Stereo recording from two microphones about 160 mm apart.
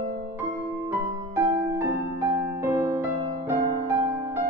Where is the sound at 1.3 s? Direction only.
15° right (ahead or behind).